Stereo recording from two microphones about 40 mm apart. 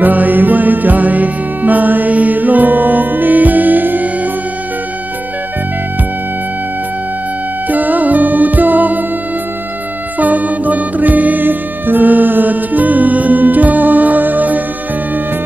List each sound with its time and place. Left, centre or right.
0.0 s music: right
7.7 s music: right
10.1 s music: right